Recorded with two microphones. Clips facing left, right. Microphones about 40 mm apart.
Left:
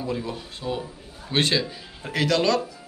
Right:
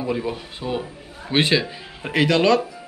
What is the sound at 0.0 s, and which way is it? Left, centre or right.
Speech, right.